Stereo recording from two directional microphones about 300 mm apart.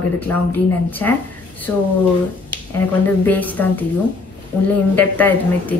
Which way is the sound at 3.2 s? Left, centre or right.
Centre.